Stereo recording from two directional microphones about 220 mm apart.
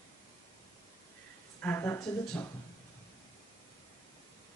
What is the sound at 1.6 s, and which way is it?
Speech, 10° left (ahead or behind).